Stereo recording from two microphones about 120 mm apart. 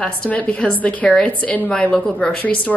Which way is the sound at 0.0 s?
10° left (ahead or behind).